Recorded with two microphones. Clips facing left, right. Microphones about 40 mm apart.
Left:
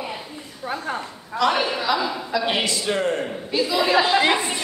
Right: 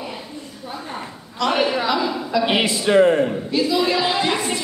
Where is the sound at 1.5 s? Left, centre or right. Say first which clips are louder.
Right 2 dB; centre.